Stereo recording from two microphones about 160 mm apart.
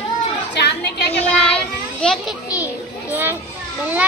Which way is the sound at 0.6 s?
90° left.